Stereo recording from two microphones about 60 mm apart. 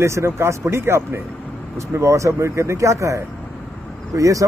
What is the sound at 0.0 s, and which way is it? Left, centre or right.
A man's voice, right.